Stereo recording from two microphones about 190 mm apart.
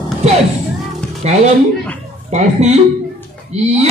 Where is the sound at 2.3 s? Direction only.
35° right (ahead or behind).